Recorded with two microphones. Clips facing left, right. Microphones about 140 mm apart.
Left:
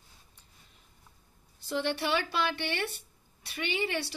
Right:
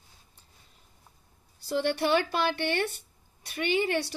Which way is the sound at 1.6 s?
40° right (ahead or behind).